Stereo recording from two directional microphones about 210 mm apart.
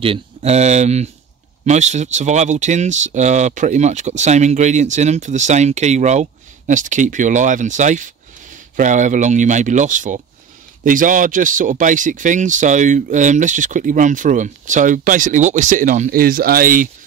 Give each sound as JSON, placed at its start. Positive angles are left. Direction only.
{"t": 0.0, "sound": "speech", "side_deg": -30}